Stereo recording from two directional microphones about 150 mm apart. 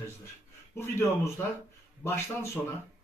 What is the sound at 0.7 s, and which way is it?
Speech, 15° left (ahead or behind).